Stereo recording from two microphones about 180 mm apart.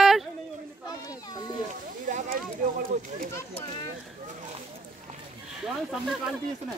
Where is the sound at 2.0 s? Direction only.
50° right (ahead or behind).